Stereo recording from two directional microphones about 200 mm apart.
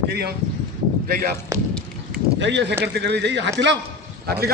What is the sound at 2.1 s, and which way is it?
Speech, 60° right (ahead or behind).